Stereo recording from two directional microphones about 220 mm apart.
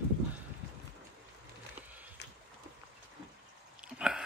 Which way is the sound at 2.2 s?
50° left (ahead or behind).